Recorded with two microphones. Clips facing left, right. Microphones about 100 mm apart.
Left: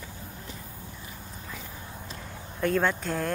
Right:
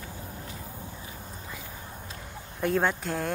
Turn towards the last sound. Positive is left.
turn(degrees=-5)  # may be behind; listen again after turning